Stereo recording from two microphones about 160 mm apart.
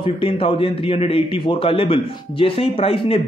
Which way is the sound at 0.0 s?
35° left (ahead or behind).